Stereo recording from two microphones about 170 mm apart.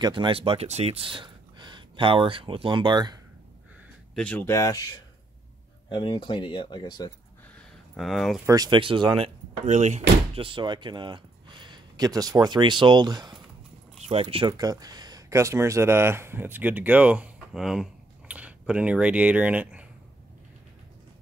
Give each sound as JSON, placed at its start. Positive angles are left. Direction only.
{"t": 0.0, "sound": "speech", "side_deg": -30}
{"t": 4.1, "sound": "speech", "side_deg": 5}
{"t": 7.9, "sound": "speech", "side_deg": 0}
{"t": 8.5, "sound": "speech", "side_deg": -25}
{"t": 9.7, "sound": "speech", "side_deg": -45}